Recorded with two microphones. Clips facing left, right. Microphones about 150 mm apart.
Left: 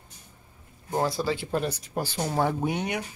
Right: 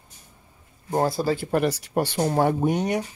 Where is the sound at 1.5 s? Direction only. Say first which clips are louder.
Right 6 dB; 80° right.